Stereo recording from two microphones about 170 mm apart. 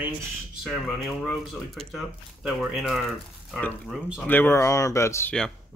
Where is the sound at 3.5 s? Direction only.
10° left (ahead or behind).